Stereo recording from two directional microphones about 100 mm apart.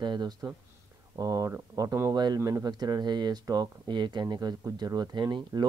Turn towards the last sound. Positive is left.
turn(degrees=-50)  # may be behind; listen again after turning